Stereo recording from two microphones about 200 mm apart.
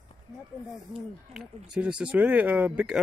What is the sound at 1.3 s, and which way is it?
Speech, 5° right (ahead or behind).